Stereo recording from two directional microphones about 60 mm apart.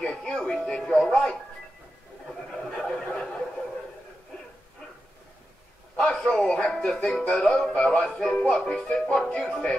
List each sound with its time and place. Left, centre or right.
0.0 s music: centre
2.8 s snicker: centre
5.9 s music: centre
7.7 s music: centre
8.0 s music: centre